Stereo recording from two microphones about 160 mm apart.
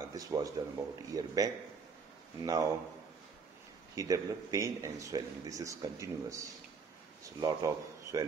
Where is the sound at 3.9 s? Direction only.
20° right (ahead or behind).